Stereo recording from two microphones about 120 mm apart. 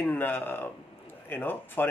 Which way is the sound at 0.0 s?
15° left (ahead or behind).